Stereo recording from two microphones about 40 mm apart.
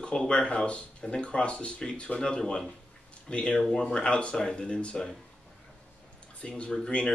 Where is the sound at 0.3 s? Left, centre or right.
Left.